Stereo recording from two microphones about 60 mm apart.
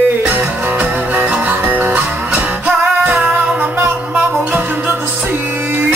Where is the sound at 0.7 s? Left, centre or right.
Right.